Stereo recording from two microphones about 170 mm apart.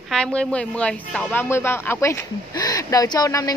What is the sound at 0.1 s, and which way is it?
Speech, 5° left (ahead or behind).